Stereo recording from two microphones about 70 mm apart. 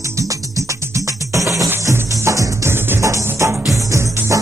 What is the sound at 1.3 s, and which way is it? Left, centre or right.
Music, right.